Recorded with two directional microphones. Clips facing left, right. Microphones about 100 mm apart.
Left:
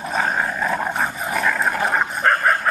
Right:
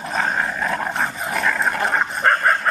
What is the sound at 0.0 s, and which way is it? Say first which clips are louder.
Dog: left 1 dB; 5° left (ahead or behind).